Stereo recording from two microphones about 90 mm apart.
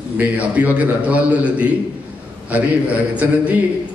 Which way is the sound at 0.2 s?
15° right (ahead or behind).